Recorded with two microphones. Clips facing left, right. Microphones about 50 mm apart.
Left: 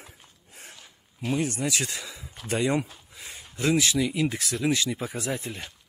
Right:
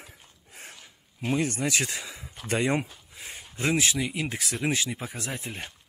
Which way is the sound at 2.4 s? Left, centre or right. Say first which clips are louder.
Left 1 dB; right.